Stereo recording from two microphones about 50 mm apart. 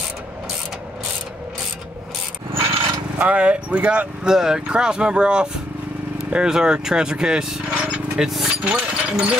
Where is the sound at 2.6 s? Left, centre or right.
Right.